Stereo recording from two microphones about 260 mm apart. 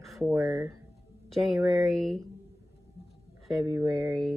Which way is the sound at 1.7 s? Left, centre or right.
Centre.